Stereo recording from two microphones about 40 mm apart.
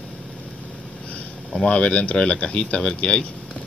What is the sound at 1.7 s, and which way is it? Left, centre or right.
Speech, left.